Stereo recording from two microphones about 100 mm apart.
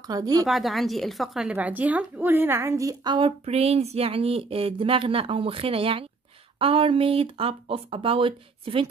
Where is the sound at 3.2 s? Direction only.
90° right.